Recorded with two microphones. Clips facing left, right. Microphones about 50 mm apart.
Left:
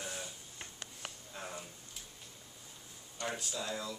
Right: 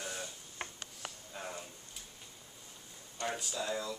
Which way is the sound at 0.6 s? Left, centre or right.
Right.